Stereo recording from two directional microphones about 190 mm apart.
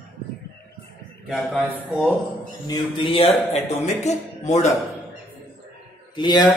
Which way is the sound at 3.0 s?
30° left (ahead or behind).